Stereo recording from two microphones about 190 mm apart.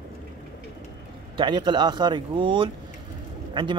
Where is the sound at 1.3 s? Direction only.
25° right (ahead or behind).